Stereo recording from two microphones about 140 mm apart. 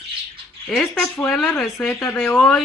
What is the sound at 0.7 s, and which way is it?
Speech, 5° left (ahead or behind).